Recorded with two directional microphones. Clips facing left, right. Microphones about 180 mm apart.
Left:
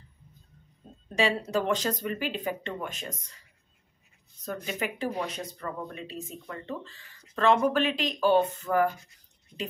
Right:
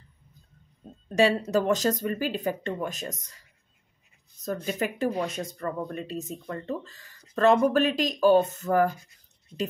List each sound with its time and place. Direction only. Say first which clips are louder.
1.1 s speech: right 4 dB; 40° right (ahead or behind)
4.6 s speech: right 4 dB; 40° right (ahead or behind)